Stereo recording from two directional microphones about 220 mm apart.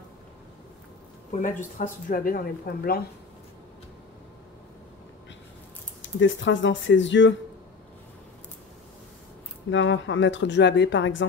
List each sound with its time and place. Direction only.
1.3 s speech: 35° left (ahead or behind)
6.0 s speech: 55° left (ahead or behind)
9.7 s speech: 60° left (ahead or behind)